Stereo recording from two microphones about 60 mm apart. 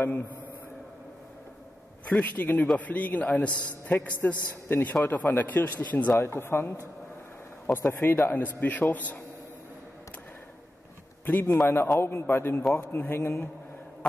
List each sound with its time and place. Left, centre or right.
2.0 s a man's voice: left
6.1 s speech: left
8.0 s a man's voice: left
11.2 s a man's voice: left
11.6 s a man's voice: left